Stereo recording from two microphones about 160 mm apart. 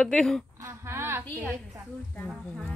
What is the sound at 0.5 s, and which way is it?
Speech, 15° right (ahead or behind).